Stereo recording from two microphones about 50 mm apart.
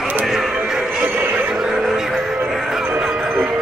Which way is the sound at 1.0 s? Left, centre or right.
Right.